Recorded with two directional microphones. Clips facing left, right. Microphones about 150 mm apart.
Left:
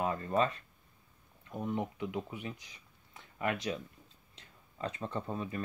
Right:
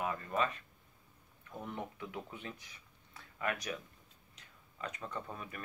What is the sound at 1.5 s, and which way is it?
Speech, 20° left (ahead or behind).